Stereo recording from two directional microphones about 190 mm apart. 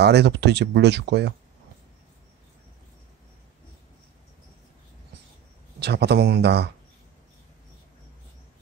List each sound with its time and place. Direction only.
0.0 s speech: 60° right (ahead or behind)
5.8 s speech: 60° right (ahead or behind)